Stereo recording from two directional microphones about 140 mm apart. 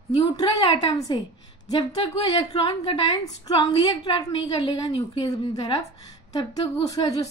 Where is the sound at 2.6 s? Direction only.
25° left (ahead or behind).